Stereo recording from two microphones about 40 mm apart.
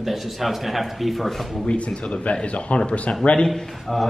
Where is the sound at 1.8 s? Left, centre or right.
Left.